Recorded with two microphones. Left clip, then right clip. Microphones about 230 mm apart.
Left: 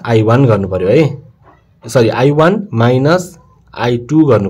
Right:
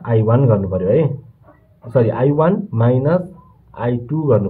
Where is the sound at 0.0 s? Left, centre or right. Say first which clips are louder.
Left 6 dB; left.